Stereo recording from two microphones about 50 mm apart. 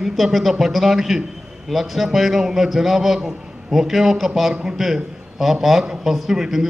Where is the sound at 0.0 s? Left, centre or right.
Centre.